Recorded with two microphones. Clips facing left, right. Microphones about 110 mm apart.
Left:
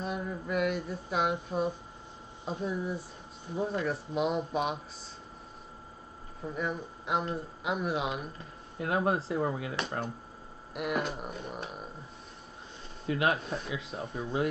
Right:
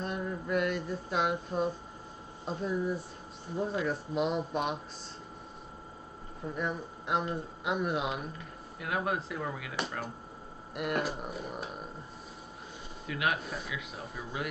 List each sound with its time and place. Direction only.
0.0 s speech: centre (ahead or behind)
6.5 s speech: centre (ahead or behind)
8.4 s speech: 30° left (ahead or behind)
10.7 s speech: centre (ahead or behind)
13.0 s speech: 30° left (ahead or behind)